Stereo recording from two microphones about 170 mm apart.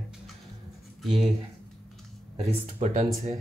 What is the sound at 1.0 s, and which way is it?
Speech, centre (ahead or behind).